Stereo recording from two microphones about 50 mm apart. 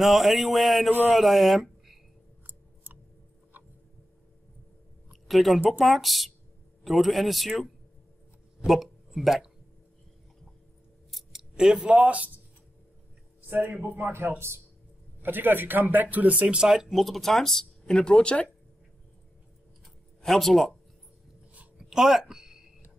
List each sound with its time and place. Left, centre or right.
0.0 s speech: centre
2.4 s a sound: right
5.1 s a sound: centre
5.7 s speech: centre
11.1 s a sound: centre
11.5 s speech: centre
13.5 s speech: right
14.4 s speech: right
15.2 s speech: right
16.4 s speech: centre
17.8 s speech: centre
20.2 s speech: centre
21.7 s a sound: centre